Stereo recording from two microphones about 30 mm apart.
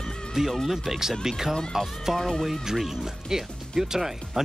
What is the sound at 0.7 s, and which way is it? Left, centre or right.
Speech, centre.